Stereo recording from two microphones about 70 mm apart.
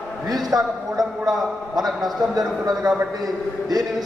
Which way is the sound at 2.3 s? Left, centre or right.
Right.